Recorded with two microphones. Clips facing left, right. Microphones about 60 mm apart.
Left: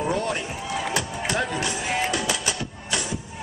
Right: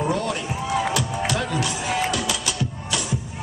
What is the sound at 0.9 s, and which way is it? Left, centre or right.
Music, left.